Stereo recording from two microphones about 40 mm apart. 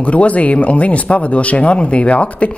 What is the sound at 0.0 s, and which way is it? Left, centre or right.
Speech, left.